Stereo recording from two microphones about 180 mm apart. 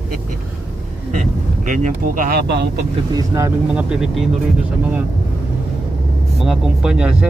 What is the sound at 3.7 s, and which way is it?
Speech, 5° right (ahead or behind).